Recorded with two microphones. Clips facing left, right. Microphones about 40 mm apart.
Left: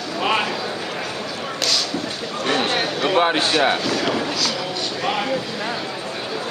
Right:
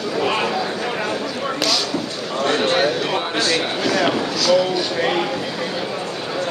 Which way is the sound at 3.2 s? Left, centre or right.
Left.